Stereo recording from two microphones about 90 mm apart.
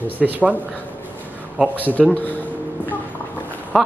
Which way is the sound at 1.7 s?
20° right (ahead or behind).